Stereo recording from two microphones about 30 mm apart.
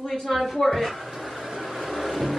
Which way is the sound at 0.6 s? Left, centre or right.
Centre.